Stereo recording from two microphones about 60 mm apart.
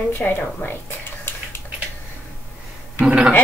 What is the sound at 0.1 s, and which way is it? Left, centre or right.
Speech, left.